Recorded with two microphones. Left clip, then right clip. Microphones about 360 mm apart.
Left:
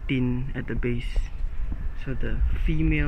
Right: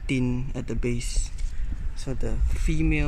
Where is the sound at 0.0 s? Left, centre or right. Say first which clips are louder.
Even; centre.